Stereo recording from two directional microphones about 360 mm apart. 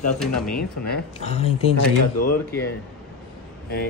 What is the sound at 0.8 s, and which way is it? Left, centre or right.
Speech, left.